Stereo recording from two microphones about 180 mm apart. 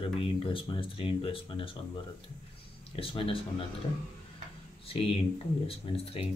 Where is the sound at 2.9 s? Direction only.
30° left (ahead or behind).